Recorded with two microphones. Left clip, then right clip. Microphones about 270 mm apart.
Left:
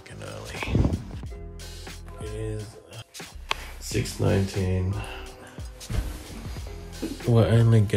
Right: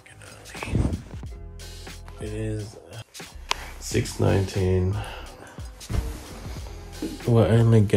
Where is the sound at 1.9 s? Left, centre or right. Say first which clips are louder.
Right 3 dB; centre.